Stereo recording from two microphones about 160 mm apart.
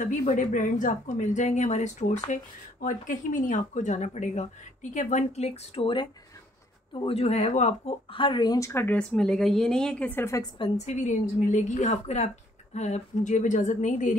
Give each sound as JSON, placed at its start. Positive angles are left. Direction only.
{"t": 0.2, "sound": "speech", "side_deg": 50}
{"t": 7.1, "sound": "speech", "side_deg": 40}
{"t": 10.9, "sound": "speech", "side_deg": 50}